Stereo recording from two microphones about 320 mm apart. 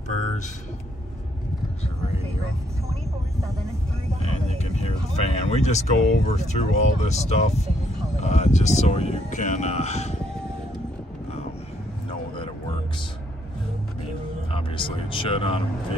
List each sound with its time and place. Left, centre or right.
4.2 s speech: centre
14.5 s speech: centre